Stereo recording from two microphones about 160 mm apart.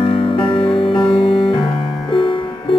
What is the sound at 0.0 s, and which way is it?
Music, 35° left (ahead or behind).